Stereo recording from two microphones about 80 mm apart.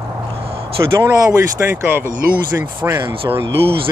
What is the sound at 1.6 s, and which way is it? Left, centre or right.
Speech, right.